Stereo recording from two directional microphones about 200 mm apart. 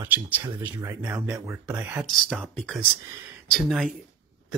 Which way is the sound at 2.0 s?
Centre (ahead or behind).